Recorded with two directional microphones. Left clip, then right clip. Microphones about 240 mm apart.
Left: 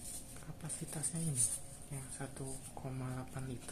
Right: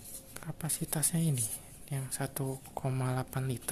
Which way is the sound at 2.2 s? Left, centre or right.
Right.